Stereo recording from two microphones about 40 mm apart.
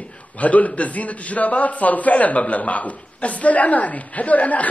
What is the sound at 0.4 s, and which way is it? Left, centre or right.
A man's voice, left.